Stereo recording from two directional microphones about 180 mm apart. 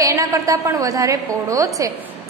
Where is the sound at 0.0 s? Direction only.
15° right (ahead or behind).